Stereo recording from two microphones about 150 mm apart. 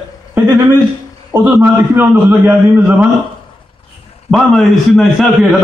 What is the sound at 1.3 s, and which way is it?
A man's voice, 15° right (ahead or behind).